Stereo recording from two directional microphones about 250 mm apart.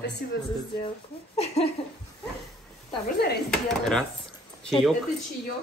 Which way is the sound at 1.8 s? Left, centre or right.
Left.